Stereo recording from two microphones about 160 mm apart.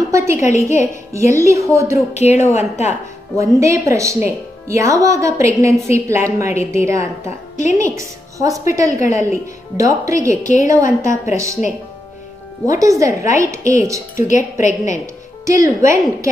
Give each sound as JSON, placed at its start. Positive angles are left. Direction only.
{"t": 0.1, "sound": "speech", "side_deg": -20}
{"t": 2.1, "sound": "speech", "side_deg": 45}
{"t": 3.3, "sound": "a woman's voice", "side_deg": -20}
{"t": 12.6, "sound": "speech", "side_deg": -20}
{"t": 14.1, "sound": "speech", "side_deg": 50}
{"t": 15.4, "sound": "speech", "side_deg": -20}